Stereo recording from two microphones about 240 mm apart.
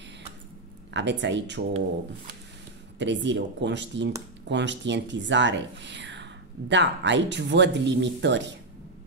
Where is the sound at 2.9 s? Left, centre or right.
Right.